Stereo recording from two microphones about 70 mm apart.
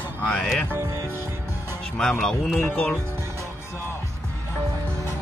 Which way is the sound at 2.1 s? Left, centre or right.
Centre.